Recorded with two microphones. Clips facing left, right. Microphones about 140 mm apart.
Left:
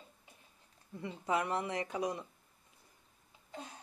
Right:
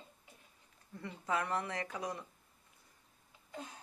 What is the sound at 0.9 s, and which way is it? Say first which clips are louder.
Speech: left 3 dB; 20° left (ahead or behind).